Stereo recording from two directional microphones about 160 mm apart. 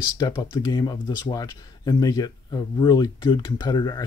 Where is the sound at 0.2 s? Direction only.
25° left (ahead or behind).